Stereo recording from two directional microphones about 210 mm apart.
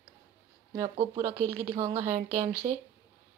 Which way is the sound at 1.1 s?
10° right (ahead or behind).